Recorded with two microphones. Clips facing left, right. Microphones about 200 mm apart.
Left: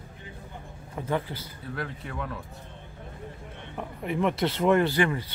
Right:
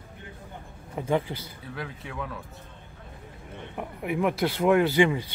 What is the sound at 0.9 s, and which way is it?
Speech, 15° right (ahead or behind).